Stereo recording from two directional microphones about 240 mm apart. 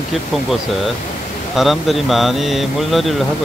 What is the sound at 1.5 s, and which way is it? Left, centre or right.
Speech, centre.